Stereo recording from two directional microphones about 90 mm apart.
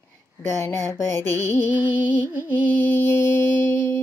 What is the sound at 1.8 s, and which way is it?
Music, 15° right (ahead or behind).